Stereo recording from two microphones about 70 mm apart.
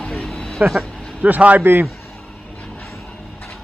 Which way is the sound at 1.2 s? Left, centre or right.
Right.